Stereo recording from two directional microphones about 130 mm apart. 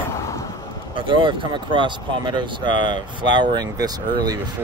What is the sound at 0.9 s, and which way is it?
Speech, 40° right (ahead or behind).